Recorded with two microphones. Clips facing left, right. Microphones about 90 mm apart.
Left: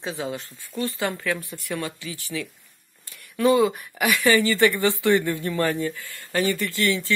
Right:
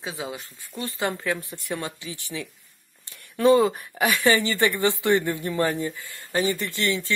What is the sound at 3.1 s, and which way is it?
Speech, 30° right (ahead or behind).